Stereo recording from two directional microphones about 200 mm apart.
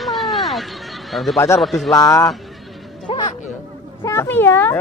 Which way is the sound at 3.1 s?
25° left (ahead or behind).